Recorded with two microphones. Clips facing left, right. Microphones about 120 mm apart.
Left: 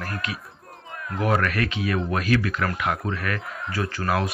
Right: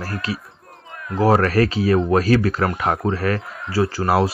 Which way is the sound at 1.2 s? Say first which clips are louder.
Right 7 dB; 35° right (ahead or behind).